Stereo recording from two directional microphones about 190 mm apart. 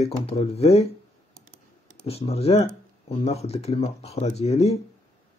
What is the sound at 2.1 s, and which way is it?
Speech, 30° left (ahead or behind).